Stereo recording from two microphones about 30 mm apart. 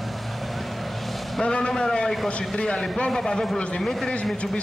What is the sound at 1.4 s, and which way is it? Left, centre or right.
Vehicle, left.